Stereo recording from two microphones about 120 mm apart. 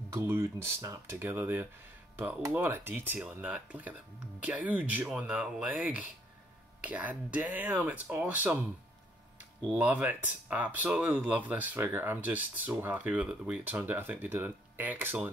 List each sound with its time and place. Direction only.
0.1 s speech: 20° right (ahead or behind)
9.8 s speech: 15° right (ahead or behind)